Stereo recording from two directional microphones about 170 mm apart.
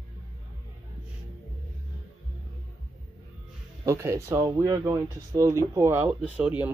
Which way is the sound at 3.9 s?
15° right (ahead or behind).